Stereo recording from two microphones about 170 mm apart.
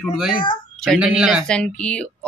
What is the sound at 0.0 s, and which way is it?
Speech, centre (ahead or behind).